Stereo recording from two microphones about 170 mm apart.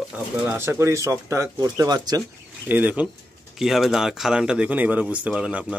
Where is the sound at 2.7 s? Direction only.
10° right (ahead or behind).